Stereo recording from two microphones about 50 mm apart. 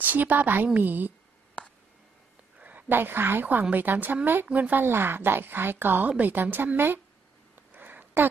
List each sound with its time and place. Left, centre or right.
0.0 s a woman's voice: right
2.6 s a woman's voice: right
4.5 s a woman's voice: right
4.8 s speech: right
6.0 s a woman's voice: right
6.3 s a woman's voice: right
7.5 s a sound: right